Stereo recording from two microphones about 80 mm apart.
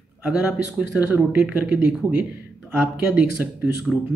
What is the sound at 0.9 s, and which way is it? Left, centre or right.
Speech, right.